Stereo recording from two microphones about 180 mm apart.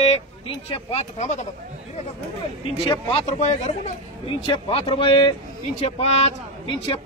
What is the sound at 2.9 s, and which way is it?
Speech, 30° left (ahead or behind).